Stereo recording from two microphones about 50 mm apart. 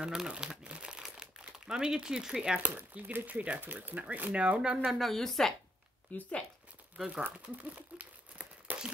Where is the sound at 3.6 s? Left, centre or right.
Right.